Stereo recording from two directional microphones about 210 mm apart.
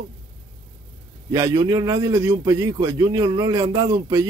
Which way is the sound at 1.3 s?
15° right (ahead or behind).